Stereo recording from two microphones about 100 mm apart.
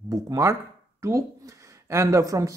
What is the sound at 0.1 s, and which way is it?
A man's voice, 30° right (ahead or behind).